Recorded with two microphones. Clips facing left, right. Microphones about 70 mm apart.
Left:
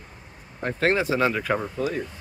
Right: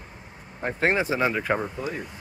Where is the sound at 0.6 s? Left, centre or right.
Centre.